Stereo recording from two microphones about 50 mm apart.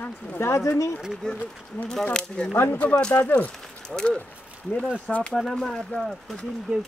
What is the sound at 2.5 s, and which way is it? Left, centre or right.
Speech, left.